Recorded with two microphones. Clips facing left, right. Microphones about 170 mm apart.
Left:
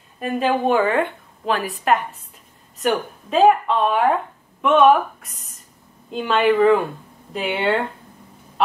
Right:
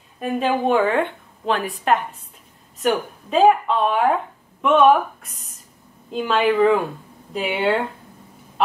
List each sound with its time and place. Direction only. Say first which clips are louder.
0.2 s speech: left 1 dB; centre (ahead or behind)
8.6 s chicken: even; centre (ahead or behind)